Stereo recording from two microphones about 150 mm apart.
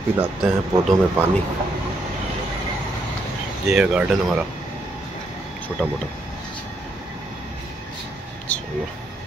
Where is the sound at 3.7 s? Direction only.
5° right (ahead or behind).